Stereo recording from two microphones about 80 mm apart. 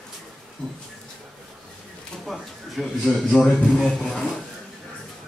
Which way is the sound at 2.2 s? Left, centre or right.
Centre.